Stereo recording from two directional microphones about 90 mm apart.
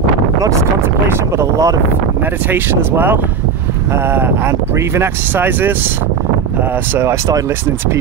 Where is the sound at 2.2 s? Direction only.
20° right (ahead or behind).